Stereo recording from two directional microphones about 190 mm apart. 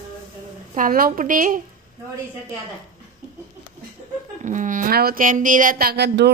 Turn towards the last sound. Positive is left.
turn(degrees=-65)  # may be behind; listen again after turning